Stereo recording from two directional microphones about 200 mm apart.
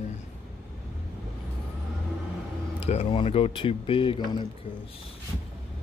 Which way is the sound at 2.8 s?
30° left (ahead or behind).